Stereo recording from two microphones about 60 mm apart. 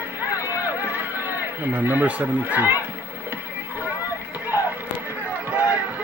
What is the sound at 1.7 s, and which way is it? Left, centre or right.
Speech, right.